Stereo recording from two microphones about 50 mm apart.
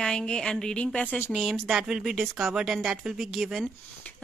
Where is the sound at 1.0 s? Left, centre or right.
Left.